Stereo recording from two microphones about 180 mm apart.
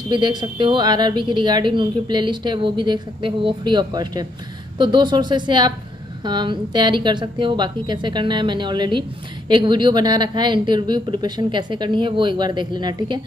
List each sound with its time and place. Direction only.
0.1 s speech: 25° right (ahead or behind)